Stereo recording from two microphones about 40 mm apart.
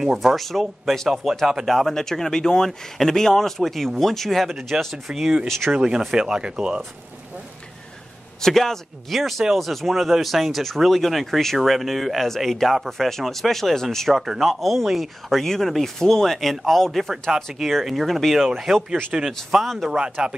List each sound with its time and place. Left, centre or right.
0.2 s speech: centre; by 6.8 s right
8.4 s speech: centre
12.4 s speech: centre
14.1 s speech: centre
15.4 s speech: centre
19.1 s speech: centre
19.5 s speech: centre
19.9 s speech: right